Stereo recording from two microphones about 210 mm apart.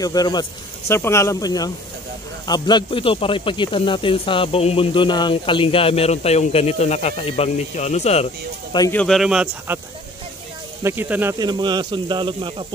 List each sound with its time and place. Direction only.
0.0 s speech: 20° left (ahead or behind)
8.7 s speech: 15° left (ahead or behind)
9.0 s speech: centre (ahead or behind)
10.8 s speech: 10° right (ahead or behind)